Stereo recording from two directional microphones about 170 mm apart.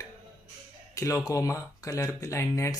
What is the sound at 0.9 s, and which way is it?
Speech, 20° left (ahead or behind).